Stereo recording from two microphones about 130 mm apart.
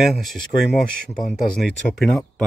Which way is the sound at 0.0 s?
Centre (ahead or behind).